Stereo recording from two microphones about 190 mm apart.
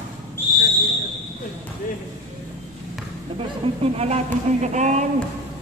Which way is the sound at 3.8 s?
35° right (ahead or behind).